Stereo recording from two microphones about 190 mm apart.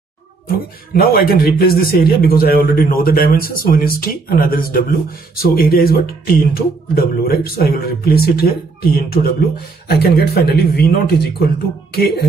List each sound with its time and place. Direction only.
0.9 s a man's voice: 50° left (ahead or behind)